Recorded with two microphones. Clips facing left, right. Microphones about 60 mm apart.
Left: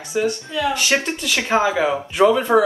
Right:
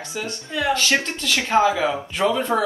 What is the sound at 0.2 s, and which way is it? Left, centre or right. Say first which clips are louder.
A woman's voice: left 6 dB; centre.